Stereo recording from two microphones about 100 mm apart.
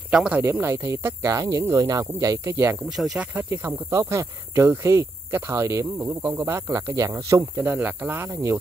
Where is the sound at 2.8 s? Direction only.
5° right (ahead or behind).